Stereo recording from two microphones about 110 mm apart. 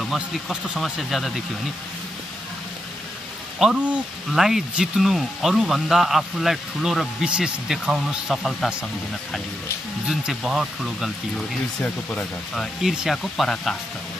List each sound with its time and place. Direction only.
0.0 s speech: centre (ahead or behind)
3.5 s speech: 5° right (ahead or behind)
10.0 s speech: 5° right (ahead or behind)
11.8 s speech: 10° left (ahead or behind)
12.8 s speech: 5° right (ahead or behind)